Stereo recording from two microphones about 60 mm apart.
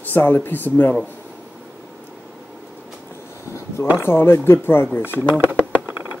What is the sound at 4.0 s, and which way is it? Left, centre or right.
Speech, left.